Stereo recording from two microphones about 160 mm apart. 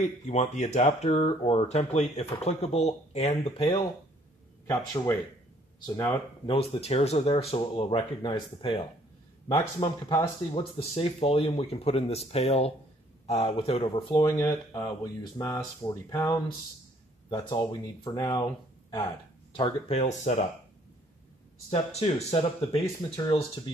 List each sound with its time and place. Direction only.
0.0 s speech: 45° left (ahead or behind)
4.6 s speech: 20° left (ahead or behind)
6.4 s speech: 35° left (ahead or behind)
20.1 s speech: 45° left (ahead or behind)
21.6 s speech: 40° left (ahead or behind)